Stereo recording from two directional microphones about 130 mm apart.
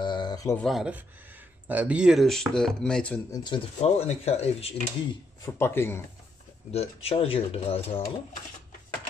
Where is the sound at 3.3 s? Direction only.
35° left (ahead or behind).